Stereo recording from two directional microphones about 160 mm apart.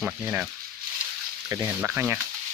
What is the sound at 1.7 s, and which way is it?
Speech, 10° right (ahead or behind).